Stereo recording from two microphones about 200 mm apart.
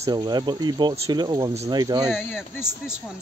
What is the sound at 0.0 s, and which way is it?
Speech, 20° right (ahead or behind).